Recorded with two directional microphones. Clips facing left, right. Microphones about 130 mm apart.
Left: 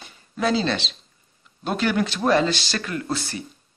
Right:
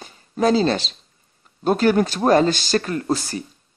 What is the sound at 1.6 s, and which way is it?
Speech, 40° right (ahead or behind).